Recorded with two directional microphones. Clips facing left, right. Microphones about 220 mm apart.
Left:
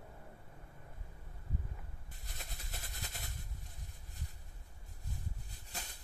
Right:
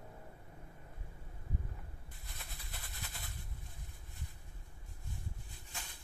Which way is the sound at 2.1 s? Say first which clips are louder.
Left 5 dB; 40° left (ahead or behind).